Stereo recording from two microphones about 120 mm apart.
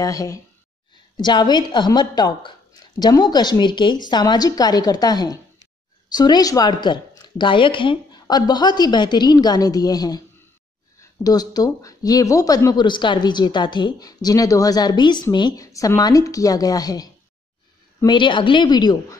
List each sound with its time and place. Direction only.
0.0 s speech: 30° left (ahead or behind)
1.1 s speech: 40° left (ahead or behind)
18.0 s speech: 40° left (ahead or behind)